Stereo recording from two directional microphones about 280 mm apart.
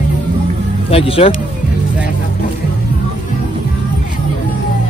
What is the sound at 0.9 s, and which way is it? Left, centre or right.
Speech, left.